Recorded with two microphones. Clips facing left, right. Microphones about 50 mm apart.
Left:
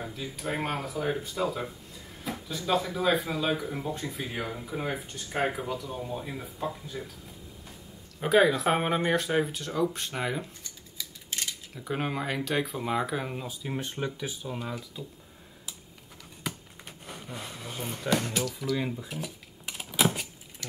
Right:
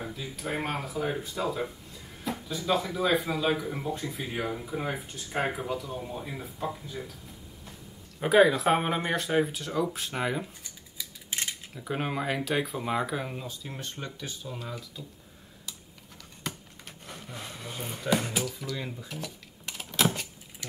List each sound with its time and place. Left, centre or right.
0.0 s speech: centre
8.2 s speech: centre
16.5 s a sound: centre
17.0 s speech: centre
18.5 s speech: centre
18.9 s a sound: centre